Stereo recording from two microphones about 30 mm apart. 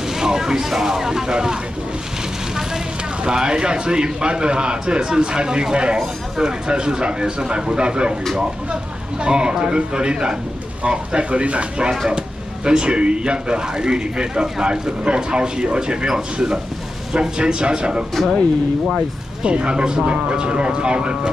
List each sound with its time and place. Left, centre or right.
0.2 s a man's voice: centre
3.3 s a man's voice: right
9.2 s a man's voice: right
19.4 s a man's voice: right